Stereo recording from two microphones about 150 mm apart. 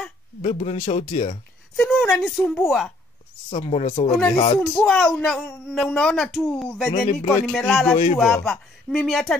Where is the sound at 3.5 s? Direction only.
40° left (ahead or behind).